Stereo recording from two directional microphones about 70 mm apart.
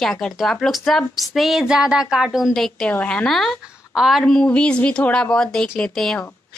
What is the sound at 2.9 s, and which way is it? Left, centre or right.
Speech, centre.